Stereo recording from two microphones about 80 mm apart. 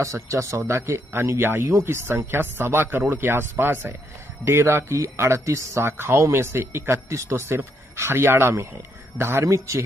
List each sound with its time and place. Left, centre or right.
0.0 s speech: right